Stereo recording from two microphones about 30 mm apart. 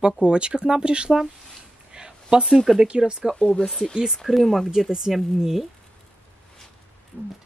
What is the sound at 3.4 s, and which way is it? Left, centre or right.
Speech, left.